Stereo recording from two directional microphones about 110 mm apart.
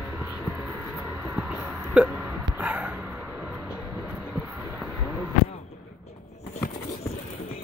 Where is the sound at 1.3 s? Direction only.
10° right (ahead or behind).